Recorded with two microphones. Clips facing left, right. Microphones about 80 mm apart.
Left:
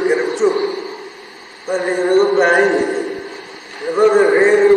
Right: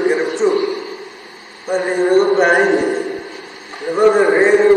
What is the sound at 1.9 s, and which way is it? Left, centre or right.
Speech, centre.